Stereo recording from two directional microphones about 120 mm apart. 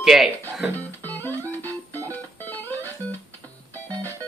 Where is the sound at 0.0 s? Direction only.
5° right (ahead or behind).